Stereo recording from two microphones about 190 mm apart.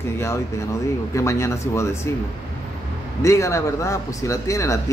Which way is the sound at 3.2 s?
15° left (ahead or behind).